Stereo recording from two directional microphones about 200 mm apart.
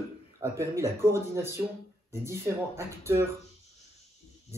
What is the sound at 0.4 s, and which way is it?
Speech, 15° right (ahead or behind).